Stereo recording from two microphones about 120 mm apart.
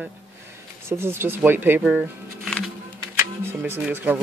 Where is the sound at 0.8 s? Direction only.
20° right (ahead or behind).